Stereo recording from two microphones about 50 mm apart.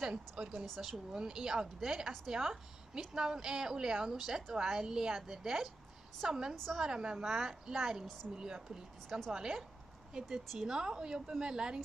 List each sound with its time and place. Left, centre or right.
0.0 s speech: right
0.7 s a woman's voice: centre